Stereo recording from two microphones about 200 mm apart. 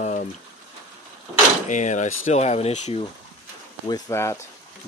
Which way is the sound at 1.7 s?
35° left (ahead or behind).